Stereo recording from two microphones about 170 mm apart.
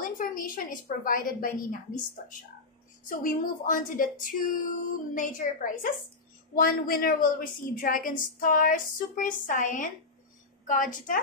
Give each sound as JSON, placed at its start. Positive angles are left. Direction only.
{"t": 0.0, "sound": "a woman's voice", "side_deg": 55}
{"t": 3.1, "sound": "a woman's voice", "side_deg": 50}